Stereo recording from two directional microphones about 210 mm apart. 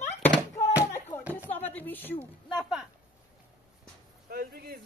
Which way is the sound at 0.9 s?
10° left (ahead or behind).